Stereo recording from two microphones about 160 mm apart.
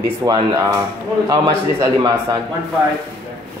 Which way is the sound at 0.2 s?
25° right (ahead or behind).